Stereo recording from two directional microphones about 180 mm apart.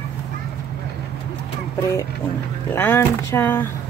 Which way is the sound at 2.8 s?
10° left (ahead or behind).